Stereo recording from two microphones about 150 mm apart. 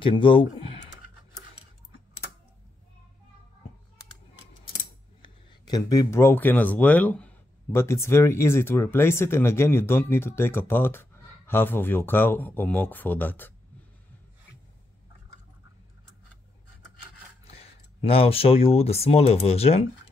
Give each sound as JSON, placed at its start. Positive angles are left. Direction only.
{"t": 0.0, "sound": "a sound", "side_deg": 35}
{"t": 5.2, "sound": "speech", "side_deg": 25}
{"t": 17.5, "sound": "speech", "side_deg": 40}